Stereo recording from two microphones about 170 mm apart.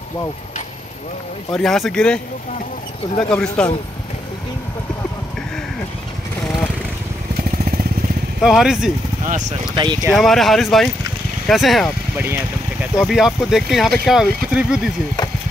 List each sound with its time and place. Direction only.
1.5 s speech: centre (ahead or behind)
3.3 s speech: 5° left (ahead or behind)
8.4 s speech: centre (ahead or behind)
9.2 s speech: 50° right (ahead or behind)
9.8 s speech: 25° right (ahead or behind)
10.1 s speech: centre (ahead or behind)
12.9 s speech: centre (ahead or behind)